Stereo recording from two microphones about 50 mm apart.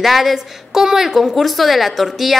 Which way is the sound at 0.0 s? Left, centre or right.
Centre.